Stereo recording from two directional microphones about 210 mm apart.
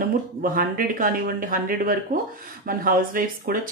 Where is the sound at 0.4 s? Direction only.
40° right (ahead or behind).